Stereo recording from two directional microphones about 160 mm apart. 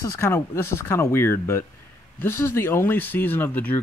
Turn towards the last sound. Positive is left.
turn(degrees=10)  # may be behind; listen again after turning